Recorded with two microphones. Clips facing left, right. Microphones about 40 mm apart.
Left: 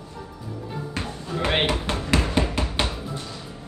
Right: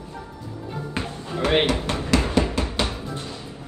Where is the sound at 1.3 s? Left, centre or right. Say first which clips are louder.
Right 3 dB; left.